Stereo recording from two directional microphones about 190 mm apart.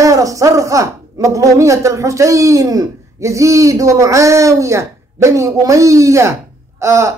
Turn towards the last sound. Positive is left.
turn(degrees=-15)  # may be behind; listen again after turning